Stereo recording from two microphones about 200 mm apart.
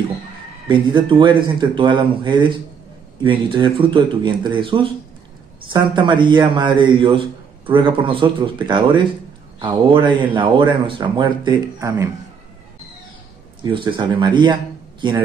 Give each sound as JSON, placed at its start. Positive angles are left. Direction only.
{"t": 0.7, "sound": "speech", "side_deg": -25}
{"t": 3.5, "sound": "speech", "side_deg": -25}
{"t": 13.6, "sound": "a man's voice", "side_deg": -25}